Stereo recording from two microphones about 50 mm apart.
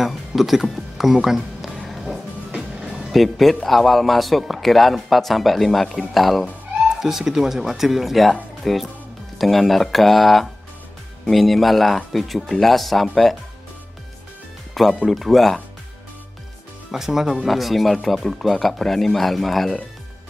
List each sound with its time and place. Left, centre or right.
0.0 s speech: centre
1.9 s music: centre
3.1 s speech: centre
14.7 s music: centre
15.0 s speech: centre
16.9 s speech: centre